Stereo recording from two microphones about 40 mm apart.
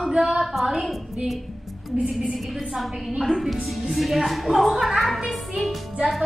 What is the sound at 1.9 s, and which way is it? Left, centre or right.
Speech, centre.